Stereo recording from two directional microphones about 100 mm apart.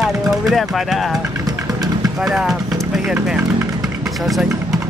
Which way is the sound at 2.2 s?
5° right (ahead or behind).